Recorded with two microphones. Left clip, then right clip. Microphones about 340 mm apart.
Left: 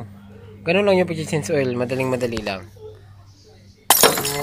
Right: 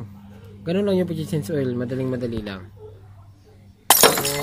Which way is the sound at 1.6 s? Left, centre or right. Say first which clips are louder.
Left 4 dB; left.